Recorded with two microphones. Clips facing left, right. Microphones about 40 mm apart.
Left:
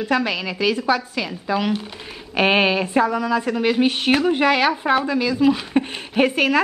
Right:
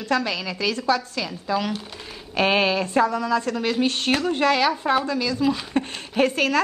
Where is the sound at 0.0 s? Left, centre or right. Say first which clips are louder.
Left 3 dB; centre.